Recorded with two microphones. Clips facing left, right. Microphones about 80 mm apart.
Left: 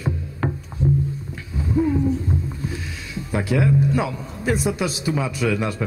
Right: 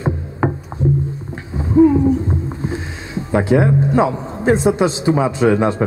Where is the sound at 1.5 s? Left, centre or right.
Right.